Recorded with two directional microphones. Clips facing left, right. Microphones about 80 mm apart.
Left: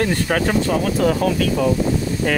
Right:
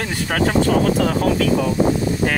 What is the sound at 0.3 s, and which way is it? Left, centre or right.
Speech, centre.